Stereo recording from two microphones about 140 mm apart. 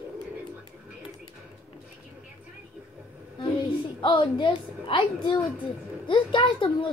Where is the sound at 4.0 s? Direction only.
35° left (ahead or behind).